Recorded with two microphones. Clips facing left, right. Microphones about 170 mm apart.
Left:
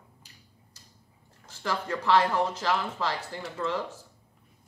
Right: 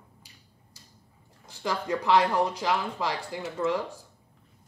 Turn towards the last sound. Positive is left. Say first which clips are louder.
# right 3 dB
turn(degrees=-15)  # may be behind; listen again after turning